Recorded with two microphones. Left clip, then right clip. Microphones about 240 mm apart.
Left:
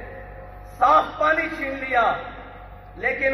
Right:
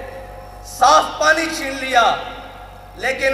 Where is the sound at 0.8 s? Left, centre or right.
Right.